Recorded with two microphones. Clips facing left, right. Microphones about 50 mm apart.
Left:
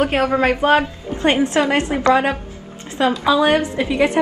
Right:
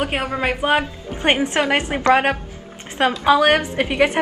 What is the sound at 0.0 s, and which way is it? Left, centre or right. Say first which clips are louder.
Speech: left 5 dB; centre.